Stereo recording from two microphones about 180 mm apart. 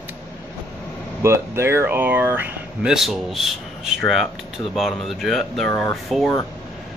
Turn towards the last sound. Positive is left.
turn(degrees=0)  # may be behind; listen again after turning